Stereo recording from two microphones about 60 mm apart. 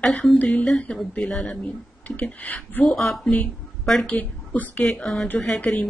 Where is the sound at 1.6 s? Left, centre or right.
Left.